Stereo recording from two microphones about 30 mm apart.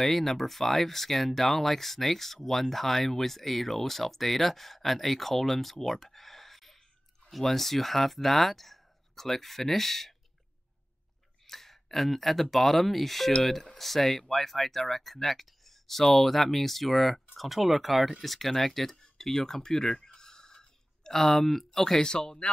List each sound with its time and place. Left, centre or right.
0.0 s speech: centre
11.4 s speech: centre
22.0 s speech: left